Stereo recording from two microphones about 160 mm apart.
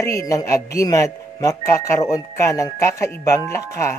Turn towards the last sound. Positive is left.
turn(degrees=15)  # may be behind; listen again after turning